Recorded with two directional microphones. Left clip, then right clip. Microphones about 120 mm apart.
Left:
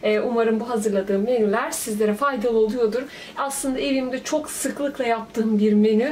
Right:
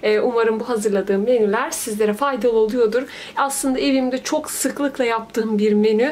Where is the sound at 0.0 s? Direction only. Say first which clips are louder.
Right 3 dB; 50° right (ahead or behind).